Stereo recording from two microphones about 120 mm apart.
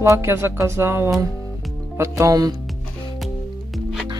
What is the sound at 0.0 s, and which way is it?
Speech, 25° right (ahead or behind).